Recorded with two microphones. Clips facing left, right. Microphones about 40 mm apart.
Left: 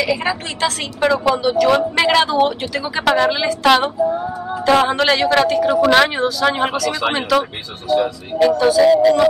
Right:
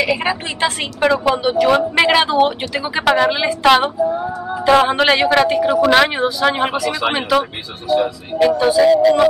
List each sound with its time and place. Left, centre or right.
0.0 s a woman's voice: right